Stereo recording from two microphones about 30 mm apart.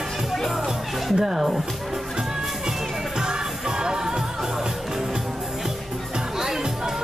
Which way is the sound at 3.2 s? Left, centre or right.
Right.